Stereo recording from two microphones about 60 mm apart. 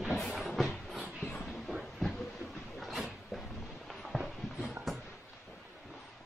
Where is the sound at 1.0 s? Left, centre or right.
Left.